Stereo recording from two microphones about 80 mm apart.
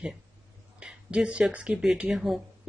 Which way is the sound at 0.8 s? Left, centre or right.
Centre.